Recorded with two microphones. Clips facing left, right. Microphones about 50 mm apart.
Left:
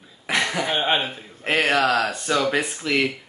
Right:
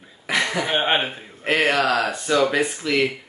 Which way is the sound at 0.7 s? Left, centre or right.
Right.